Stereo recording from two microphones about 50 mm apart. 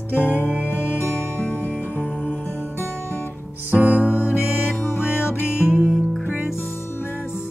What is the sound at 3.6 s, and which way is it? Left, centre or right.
Music, right.